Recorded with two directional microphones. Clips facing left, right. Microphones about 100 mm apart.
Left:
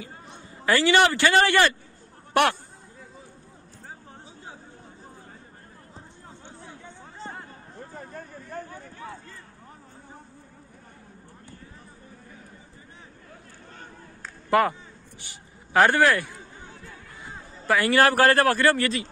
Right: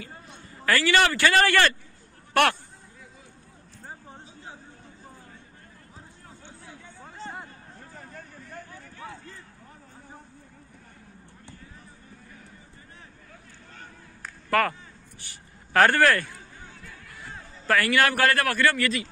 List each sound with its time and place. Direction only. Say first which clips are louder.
0.0 s a man's voice: left 1 dB; 20° left (ahead or behind)
14.5 s a sound: left 3 dB; 20° left (ahead or behind)
17.7 s speech: left 3 dB; 30° left (ahead or behind)